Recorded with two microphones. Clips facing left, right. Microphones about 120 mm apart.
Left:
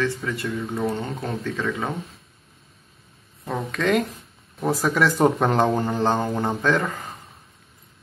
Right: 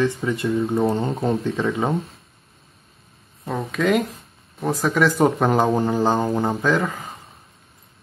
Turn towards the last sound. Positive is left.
turn(degrees=-5)  # may be behind; listen again after turning